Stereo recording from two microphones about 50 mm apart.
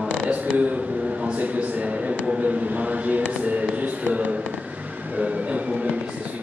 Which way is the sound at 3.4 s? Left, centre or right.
Right.